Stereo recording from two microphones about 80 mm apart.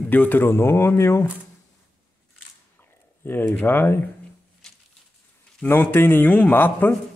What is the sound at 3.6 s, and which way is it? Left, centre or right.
Speech, left.